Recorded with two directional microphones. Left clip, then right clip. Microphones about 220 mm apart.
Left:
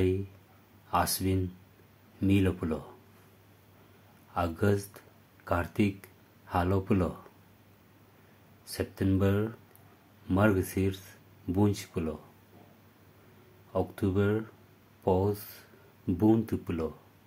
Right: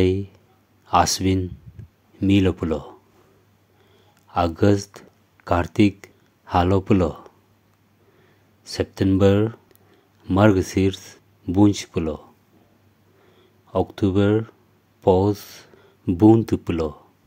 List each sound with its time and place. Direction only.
0.8 s speech: 35° right (ahead or behind)
4.3 s speech: 35° right (ahead or behind)
8.6 s speech: 35° right (ahead or behind)
13.7 s speech: 35° right (ahead or behind)